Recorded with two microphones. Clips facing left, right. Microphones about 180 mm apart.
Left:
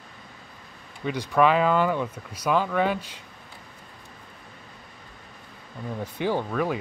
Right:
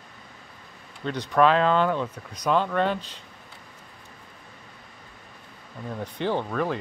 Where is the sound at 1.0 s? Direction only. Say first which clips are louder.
Even; 10° left (ahead or behind).